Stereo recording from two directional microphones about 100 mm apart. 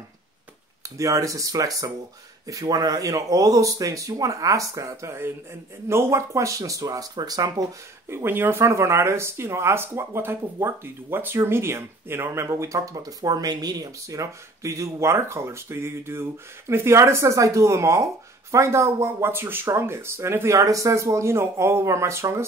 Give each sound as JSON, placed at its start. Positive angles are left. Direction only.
{"t": 0.9, "sound": "speech", "side_deg": -30}
{"t": 8.1, "sound": "speech", "side_deg": -25}